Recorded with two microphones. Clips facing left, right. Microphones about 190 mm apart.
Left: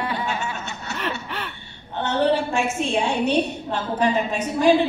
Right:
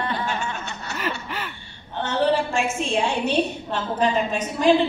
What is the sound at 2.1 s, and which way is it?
A woman's voice, 60° left (ahead or behind).